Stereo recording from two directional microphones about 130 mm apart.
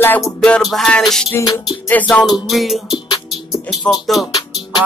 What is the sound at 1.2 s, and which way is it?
Music, 25° left (ahead or behind).